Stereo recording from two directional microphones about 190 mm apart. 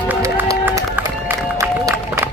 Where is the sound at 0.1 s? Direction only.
10° right (ahead or behind).